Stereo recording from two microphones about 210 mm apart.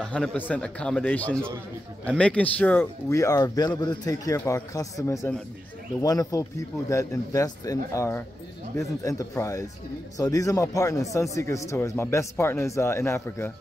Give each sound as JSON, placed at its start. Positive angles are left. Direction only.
{"t": 0.0, "sound": "a man's voice", "side_deg": 5}